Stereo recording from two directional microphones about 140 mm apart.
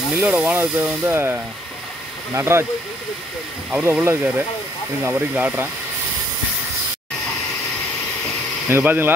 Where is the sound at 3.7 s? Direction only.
5° right (ahead or behind).